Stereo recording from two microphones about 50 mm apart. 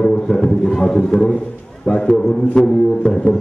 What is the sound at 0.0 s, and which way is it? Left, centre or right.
Music, centre.